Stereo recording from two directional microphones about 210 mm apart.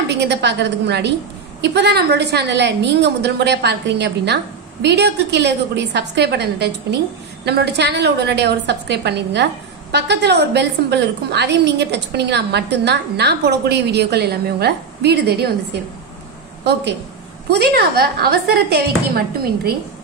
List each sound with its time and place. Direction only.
0.1 s a woman's voice: 55° right (ahead or behind)
17.5 s a woman's voice: 50° right (ahead or behind)